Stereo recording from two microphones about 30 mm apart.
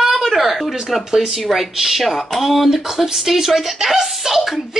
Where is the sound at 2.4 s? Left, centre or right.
Centre.